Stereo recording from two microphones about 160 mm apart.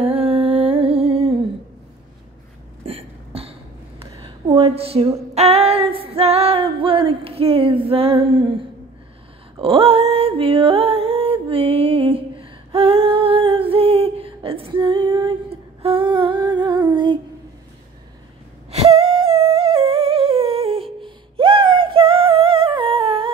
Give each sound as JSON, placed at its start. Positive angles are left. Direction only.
{"t": 0.0, "sound": "music", "side_deg": -35}
{"t": 2.8, "sound": "a sound", "side_deg": -35}
{"t": 4.2, "sound": "female singing", "side_deg": -35}
{"t": 9.6, "sound": "music", "side_deg": -35}
{"t": 18.7, "sound": "humming", "side_deg": -40}